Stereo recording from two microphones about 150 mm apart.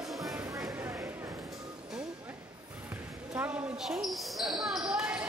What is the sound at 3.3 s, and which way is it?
Basketball bounce, 10° right (ahead or behind).